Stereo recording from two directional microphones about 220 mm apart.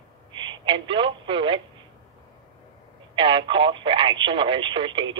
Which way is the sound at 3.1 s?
20° right (ahead or behind).